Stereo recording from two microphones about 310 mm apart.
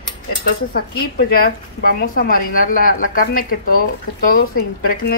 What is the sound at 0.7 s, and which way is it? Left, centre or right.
Speech, left.